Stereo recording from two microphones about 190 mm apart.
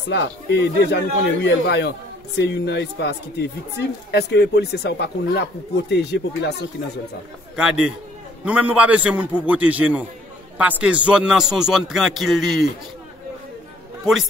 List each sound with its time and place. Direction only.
0.1 s speech: 65° left (ahead or behind)
7.5 s a man's voice: 5° right (ahead or behind)